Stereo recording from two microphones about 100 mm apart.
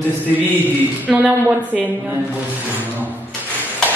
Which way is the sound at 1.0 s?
15° right (ahead or behind).